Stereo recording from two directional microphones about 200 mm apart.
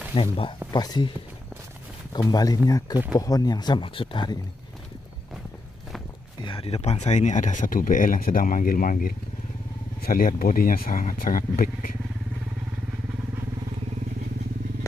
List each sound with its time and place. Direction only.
0.1 s speech: 25° left (ahead or behind)
2.1 s speech: 20° left (ahead or behind)
6.4 s speech: 30° left (ahead or behind); by 12.0 s 45° left (ahead or behind)